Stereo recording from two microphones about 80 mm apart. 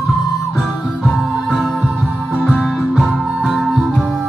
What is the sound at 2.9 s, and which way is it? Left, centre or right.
Music, centre.